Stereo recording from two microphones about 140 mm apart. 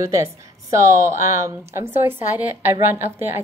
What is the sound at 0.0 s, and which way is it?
A woman's voice, 20° right (ahead or behind).